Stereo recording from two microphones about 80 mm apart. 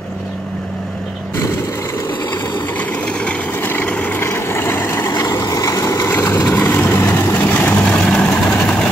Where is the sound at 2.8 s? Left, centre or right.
Centre.